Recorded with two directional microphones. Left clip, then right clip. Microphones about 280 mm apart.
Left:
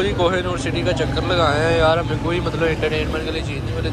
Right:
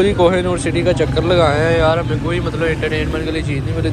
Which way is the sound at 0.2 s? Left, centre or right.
Centre.